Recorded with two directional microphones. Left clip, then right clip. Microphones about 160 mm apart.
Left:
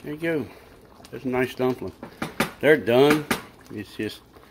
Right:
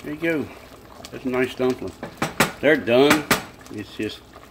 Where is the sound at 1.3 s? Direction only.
40° left (ahead or behind).